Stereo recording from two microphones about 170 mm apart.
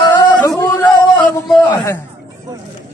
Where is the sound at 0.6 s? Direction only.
20° left (ahead or behind).